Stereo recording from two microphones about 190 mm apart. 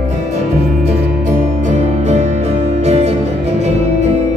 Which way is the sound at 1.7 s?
35° right (ahead or behind).